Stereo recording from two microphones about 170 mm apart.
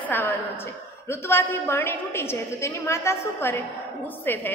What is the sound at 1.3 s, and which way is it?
A woman's voice, 15° left (ahead or behind).